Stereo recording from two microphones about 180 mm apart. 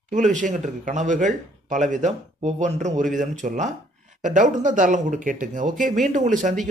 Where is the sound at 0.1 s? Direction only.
45° right (ahead or behind).